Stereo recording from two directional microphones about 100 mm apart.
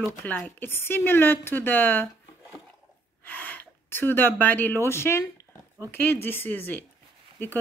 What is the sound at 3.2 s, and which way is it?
Speech, 15° left (ahead or behind).